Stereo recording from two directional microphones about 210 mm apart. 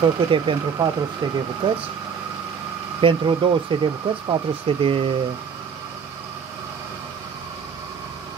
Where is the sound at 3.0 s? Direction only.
25° right (ahead or behind).